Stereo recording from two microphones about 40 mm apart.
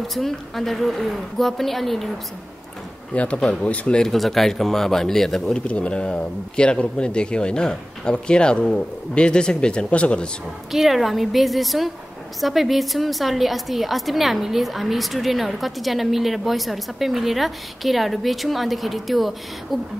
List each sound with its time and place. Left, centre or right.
0.0 s a woman's voice: centre
3.1 s speech: left
4.0 s speech: centre
5.7 s speech: left
10.7 s a woman's voice: centre